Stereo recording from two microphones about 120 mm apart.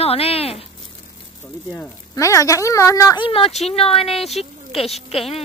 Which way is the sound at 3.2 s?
50° left (ahead or behind).